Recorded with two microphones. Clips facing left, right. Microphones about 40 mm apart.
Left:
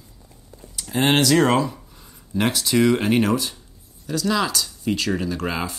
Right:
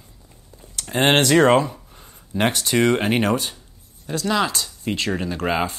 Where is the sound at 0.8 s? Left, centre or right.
Right.